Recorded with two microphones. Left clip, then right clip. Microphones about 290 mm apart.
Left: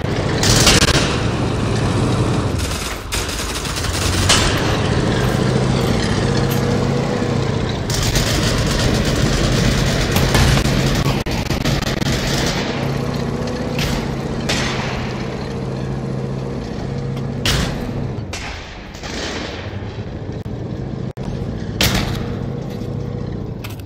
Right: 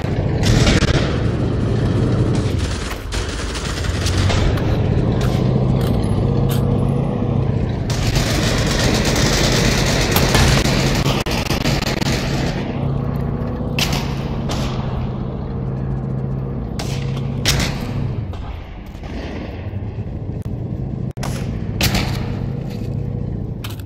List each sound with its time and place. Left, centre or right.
0.1 s vehicle: left
0.7 s a sound: centre
4.3 s vehicle: left
7.9 s a sound: centre
12.3 s gunshot: centre
12.8 s vehicle: left